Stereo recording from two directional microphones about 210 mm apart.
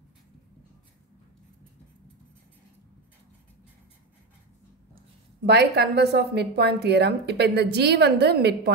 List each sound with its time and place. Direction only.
5.4 s speech: 50° right (ahead or behind)